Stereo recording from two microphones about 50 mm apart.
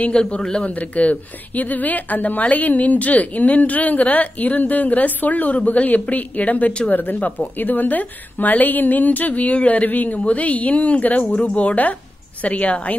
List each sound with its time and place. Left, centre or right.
0.1 s a man's voice: centre
0.7 s a woman's voice: left